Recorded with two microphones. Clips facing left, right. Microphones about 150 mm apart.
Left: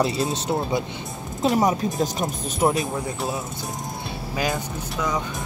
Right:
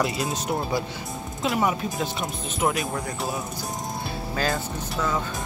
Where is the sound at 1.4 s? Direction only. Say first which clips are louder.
Left 4 dB; 35° left (ahead or behind).